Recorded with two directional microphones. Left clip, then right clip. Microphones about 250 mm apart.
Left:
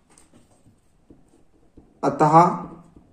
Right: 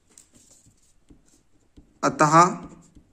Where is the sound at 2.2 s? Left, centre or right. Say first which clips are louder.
Left 1 dB; right.